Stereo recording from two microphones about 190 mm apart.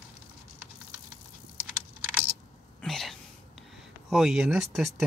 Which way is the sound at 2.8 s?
Centre (ahead or behind).